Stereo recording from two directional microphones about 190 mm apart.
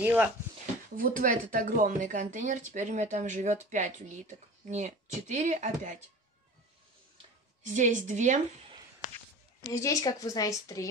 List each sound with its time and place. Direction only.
0.0 s speech: 10° right (ahead or behind)
0.9 s speech: 45° right (ahead or behind)
7.6 s speech: 40° right (ahead or behind)
9.7 s speech: 15° left (ahead or behind)